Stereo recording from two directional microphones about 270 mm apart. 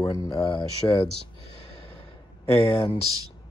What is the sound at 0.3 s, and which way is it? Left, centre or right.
Speech, centre.